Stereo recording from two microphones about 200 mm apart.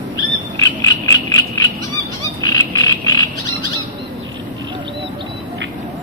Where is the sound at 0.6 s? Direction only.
15° left (ahead or behind).